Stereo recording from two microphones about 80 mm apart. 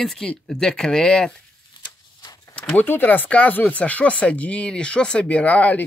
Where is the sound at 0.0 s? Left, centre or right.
Centre.